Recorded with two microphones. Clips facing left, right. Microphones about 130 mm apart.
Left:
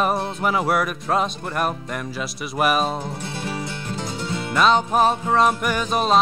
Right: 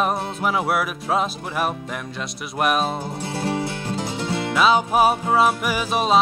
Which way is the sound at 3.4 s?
30° right (ahead or behind).